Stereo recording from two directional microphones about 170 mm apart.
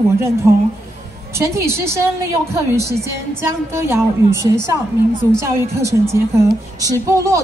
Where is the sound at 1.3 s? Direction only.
15° right (ahead or behind).